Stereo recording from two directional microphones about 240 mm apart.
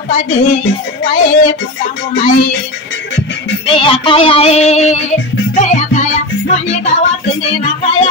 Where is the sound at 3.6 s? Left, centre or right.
Left.